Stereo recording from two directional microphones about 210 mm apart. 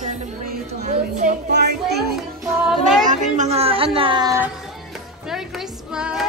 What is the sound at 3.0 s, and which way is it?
Speech, 35° right (ahead or behind).